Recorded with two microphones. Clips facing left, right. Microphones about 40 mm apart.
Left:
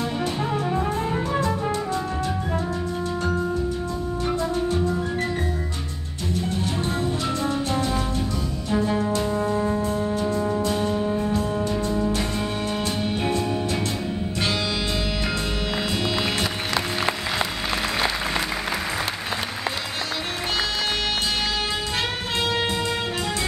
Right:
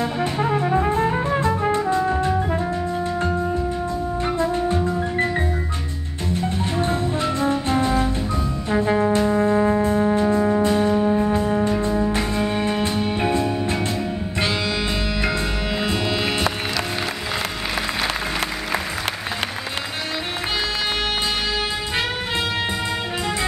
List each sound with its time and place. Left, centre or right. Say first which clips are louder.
0.2 s music: right 4 dB; right
1.3 s music: right 3 dB; right
1.6 s brass instrument: right 5 dB; right
2.0 s music: right 6 dB; right
4.2 s music: right 2 dB; right
6.6 s music: right 3 dB; right
8.6 s brass instrument: right 4 dB; right
10.6 s music: right 5 dB; right
15.9 s music: right 2 dB; centre